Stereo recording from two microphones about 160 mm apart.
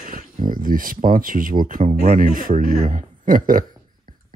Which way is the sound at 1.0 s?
60° right (ahead or behind).